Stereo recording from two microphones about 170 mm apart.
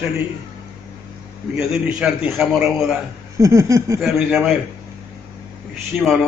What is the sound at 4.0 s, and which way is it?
Speech, centre (ahead or behind).